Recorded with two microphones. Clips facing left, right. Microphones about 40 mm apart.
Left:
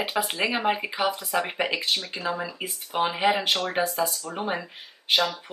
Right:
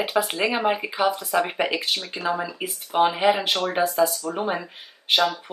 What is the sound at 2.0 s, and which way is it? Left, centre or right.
Speech, right.